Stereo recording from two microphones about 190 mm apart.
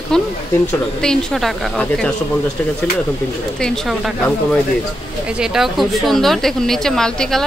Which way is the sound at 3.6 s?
5° left (ahead or behind).